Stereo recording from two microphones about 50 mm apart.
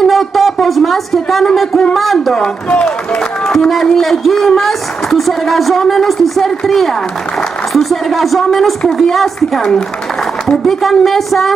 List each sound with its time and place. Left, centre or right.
0.0 s a sound: centre
2.0 s a man's voice: centre
2.3 s speech: centre